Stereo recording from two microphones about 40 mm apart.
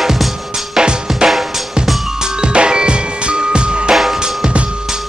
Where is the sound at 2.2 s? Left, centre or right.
Right.